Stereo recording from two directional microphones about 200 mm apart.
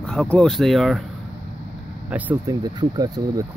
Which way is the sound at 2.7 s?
20° right (ahead or behind).